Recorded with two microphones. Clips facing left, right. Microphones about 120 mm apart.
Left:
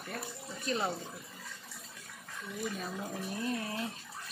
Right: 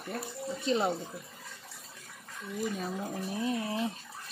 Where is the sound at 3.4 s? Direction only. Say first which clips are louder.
Right 5 dB; 20° right (ahead or behind).